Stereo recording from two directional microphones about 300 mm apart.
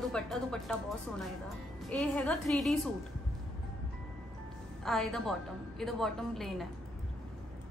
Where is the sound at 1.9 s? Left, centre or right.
Centre.